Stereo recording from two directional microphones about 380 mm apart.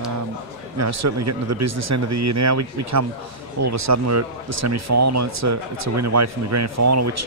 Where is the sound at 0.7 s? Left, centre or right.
Right.